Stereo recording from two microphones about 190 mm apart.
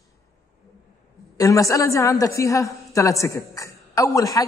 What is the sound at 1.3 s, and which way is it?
A woman's voice, 15° left (ahead or behind).